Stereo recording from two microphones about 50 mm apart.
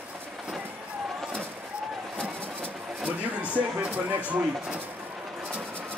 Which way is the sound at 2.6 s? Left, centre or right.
Right.